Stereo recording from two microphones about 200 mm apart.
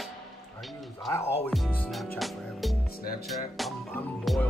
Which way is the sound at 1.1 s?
10° left (ahead or behind).